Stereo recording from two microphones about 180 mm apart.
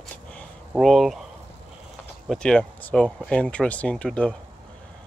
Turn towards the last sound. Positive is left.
turn(degrees=5)  # may be behind; listen again after turning